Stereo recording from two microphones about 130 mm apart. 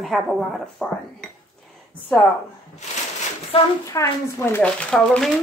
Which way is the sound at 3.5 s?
45° left (ahead or behind).